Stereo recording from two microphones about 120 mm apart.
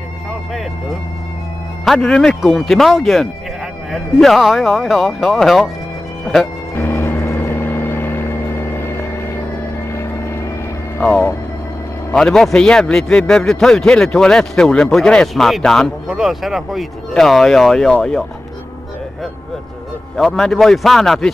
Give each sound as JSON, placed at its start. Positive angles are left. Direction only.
{"t": 1.9, "sound": "a man's voice", "side_deg": 5}
{"t": 6.7, "sound": "music", "side_deg": 15}
{"t": 11.0, "sound": "a man's voice", "side_deg": 15}
{"t": 20.2, "sound": "a man's voice", "side_deg": 0}